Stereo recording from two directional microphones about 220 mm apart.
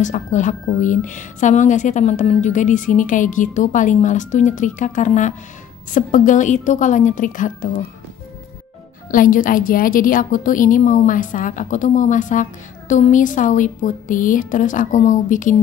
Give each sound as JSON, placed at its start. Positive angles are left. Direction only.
{"t": 0.0, "sound": "a woman's voice", "side_deg": 35}
{"t": 9.1, "sound": "a woman's voice", "side_deg": 40}